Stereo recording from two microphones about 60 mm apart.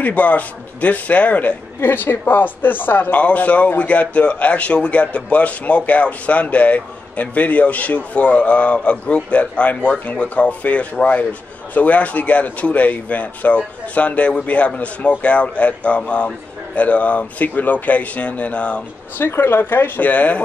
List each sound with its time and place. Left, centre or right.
0.0 s speech: left
1.8 s speech: left; by 18.8 s centre
19.1 s speech: left
20.1 s speech: left